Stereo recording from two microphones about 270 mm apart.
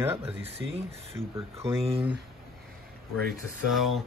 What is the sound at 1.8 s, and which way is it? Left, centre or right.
Speech, right.